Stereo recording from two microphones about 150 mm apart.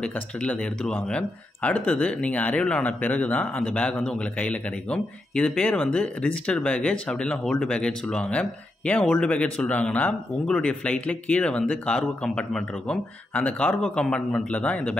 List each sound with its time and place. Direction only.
0.0 s speech: 10° left (ahead or behind)